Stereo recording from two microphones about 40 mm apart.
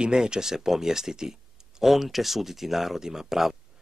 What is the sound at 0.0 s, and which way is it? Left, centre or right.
Speech, centre.